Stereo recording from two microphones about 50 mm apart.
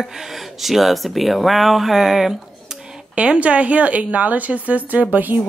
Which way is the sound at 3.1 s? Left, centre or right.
Right.